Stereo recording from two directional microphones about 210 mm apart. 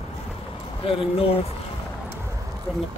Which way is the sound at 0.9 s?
25° left (ahead or behind).